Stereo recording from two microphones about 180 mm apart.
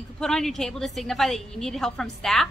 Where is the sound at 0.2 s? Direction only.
Centre (ahead or behind).